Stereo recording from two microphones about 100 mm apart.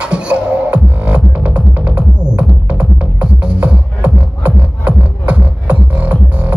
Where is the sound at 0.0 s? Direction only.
10° right (ahead or behind).